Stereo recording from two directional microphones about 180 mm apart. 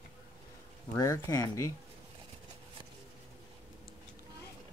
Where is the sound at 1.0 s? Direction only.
15° left (ahead or behind).